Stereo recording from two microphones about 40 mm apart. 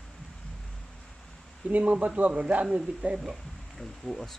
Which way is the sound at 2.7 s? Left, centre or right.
Right.